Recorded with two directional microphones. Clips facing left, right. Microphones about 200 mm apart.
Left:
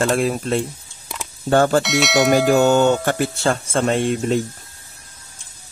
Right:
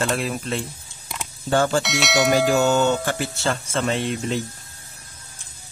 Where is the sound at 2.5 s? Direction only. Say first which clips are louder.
Left 4 dB; 60° left (ahead or behind).